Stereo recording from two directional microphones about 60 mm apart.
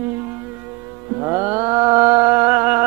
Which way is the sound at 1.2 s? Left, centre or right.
Right.